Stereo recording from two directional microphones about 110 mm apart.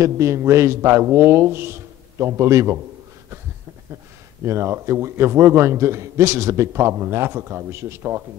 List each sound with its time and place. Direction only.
0.0 s a man's voice: 25° right (ahead or behind)
4.5 s a man's voice: 25° right (ahead or behind)